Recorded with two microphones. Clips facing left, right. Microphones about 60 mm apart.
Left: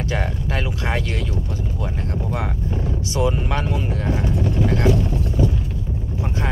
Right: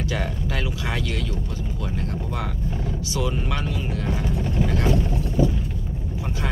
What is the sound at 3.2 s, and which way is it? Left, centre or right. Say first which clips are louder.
Speech: left 5 dB; left.